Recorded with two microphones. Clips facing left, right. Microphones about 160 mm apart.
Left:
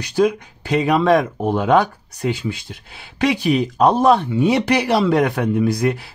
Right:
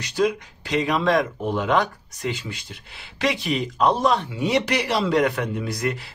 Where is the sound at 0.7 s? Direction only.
50° left (ahead or behind).